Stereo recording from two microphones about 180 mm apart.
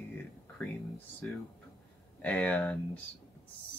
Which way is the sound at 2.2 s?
5° left (ahead or behind).